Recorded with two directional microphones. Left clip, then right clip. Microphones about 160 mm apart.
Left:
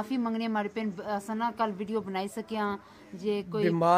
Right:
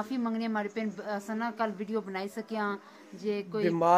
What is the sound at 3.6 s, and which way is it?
Speech, centre (ahead or behind).